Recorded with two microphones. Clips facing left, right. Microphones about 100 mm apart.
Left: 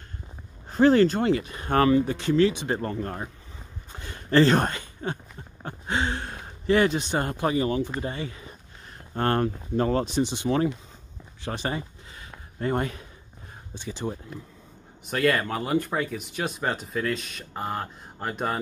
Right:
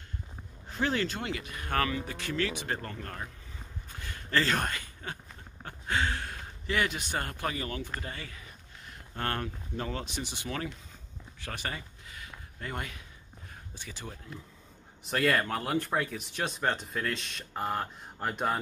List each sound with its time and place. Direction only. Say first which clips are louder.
0.7 s speech: left 12 dB; 40° left (ahead or behind)
3.9 s a sound: left 9 dB; 25° left (ahead or behind)
8.0 s speech: left 9 dB; 25° left (ahead or behind)
11.4 s a sound: left 8 dB; 25° left (ahead or behind)
13.7 s speech: left 12 dB; 25° left (ahead or behind)
15.0 s speech: left 4 dB; centre (ahead or behind)